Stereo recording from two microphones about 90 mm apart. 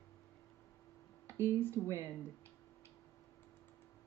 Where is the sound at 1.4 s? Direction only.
25° left (ahead or behind).